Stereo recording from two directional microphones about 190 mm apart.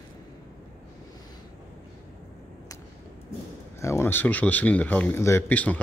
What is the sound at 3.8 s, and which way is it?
Speech, 15° left (ahead or behind).